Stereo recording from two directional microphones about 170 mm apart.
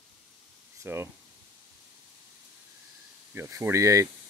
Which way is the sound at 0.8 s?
15° right (ahead or behind).